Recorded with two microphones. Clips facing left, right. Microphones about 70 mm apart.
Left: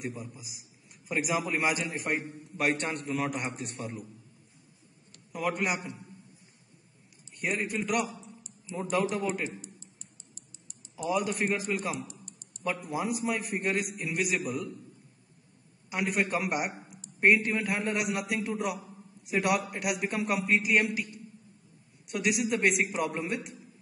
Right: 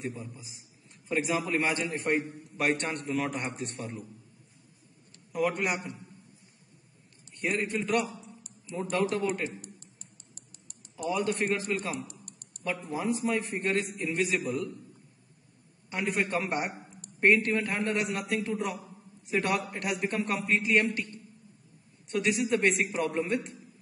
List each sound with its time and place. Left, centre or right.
0.0 s a man's voice: centre
5.3 s a man's voice: centre
7.3 s a man's voice: centre
9.6 s typing: right
11.1 s a man's voice: centre
12.1 s a sound: right
12.6 s a man's voice: centre
15.9 s a man's voice: centre